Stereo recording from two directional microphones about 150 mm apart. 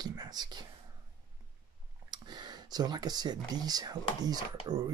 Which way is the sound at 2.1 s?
30° right (ahead or behind).